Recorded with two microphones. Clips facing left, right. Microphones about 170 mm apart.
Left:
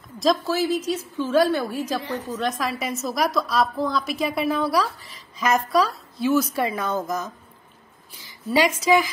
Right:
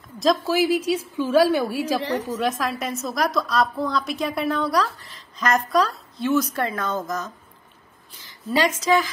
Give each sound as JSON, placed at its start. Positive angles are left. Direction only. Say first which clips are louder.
{"t": 0.5, "sound": "a woman's voice", "louder": "right 3 dB", "side_deg": -10}
{"t": 2.0, "sound": "a woman's voice", "louder": "right 4 dB", "side_deg": -90}
{"t": 2.4, "sound": "a woman's voice", "louder": "right 1 dB", "side_deg": 0}